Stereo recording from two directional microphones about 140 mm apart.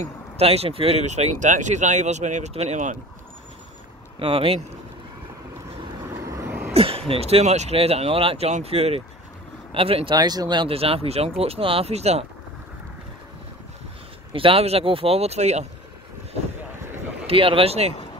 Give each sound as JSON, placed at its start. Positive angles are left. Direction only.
{"t": 0.0, "sound": "speech", "side_deg": -45}
{"t": 4.2, "sound": "speech", "side_deg": -40}
{"t": 6.0, "sound": "vehicle", "side_deg": -20}
{"t": 6.7, "sound": "speech", "side_deg": -45}
{"t": 10.1, "sound": "speech", "side_deg": -30}
{"t": 14.3, "sound": "speech", "side_deg": -40}
{"t": 17.3, "sound": "speech", "side_deg": -40}